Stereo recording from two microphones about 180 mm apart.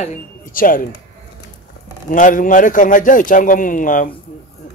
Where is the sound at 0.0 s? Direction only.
45° left (ahead or behind).